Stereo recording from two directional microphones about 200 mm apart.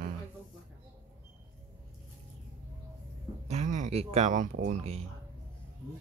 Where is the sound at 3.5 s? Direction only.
35° right (ahead or behind).